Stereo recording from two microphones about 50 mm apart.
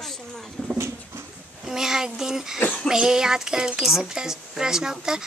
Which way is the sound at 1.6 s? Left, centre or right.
Centre.